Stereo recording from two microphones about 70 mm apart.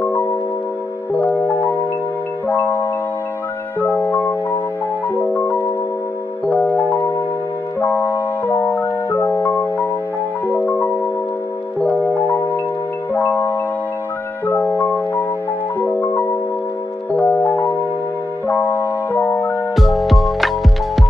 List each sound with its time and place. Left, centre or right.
1.2 s music: left
2.4 s marimba: left
4.0 s music: left
10.5 s music: left
13.1 s marimba: left
15.8 s music: left
17.3 s music: left
19.7 s music: centre